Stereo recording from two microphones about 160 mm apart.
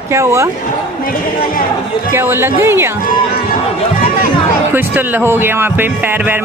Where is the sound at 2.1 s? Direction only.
15° right (ahead or behind).